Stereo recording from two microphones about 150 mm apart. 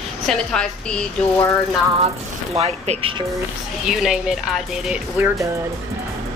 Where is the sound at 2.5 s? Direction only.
45° right (ahead or behind).